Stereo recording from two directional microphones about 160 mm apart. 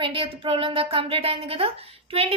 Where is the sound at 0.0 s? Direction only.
35° right (ahead or behind).